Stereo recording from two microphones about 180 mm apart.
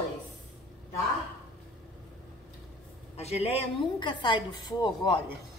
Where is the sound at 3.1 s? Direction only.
35° left (ahead or behind).